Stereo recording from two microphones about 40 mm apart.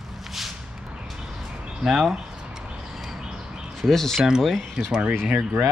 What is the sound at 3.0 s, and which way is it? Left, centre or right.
Bird, centre.